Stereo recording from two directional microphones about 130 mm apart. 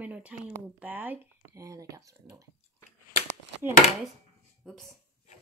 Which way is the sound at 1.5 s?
25° right (ahead or behind).